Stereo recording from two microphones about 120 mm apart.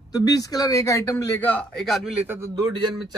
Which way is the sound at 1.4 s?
10° left (ahead or behind).